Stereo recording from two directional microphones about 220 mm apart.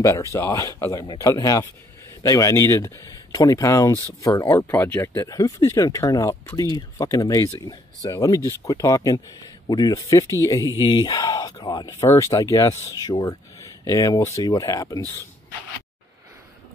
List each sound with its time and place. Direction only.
0.0 s speech: 15° left (ahead or behind)